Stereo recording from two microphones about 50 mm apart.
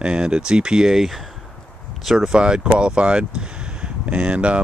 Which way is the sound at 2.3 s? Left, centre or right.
Centre.